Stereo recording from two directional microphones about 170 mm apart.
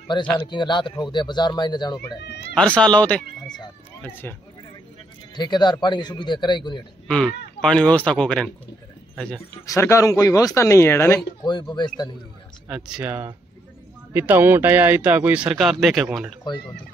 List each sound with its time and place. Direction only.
0.5 s a man's voice: 25° left (ahead or behind)
2.2 s speech: 90° left
2.5 s speech: 5° left (ahead or behind)
3.4 s speech: 25° left (ahead or behind)
4.0 s speech: 10° left (ahead or behind)
5.3 s a man's voice: 25° left (ahead or behind)
7.1 s a man's voice: 5° left (ahead or behind)
9.7 s speech: 20° left (ahead or behind)
11.4 s a man's voice: 25° left (ahead or behind)
12.6 s speech: 5° right (ahead or behind)